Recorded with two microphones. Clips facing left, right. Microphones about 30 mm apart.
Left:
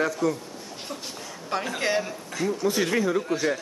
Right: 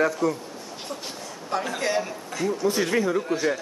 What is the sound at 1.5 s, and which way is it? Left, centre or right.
Speech, centre.